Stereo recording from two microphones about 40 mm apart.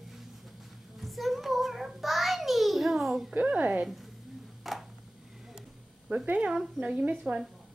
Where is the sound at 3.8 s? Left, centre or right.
Centre.